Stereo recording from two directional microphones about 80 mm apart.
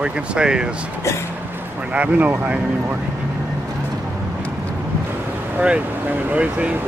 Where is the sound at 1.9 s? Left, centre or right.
Centre.